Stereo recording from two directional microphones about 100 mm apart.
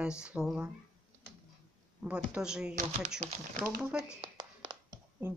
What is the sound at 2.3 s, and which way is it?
Speech, 5° right (ahead or behind).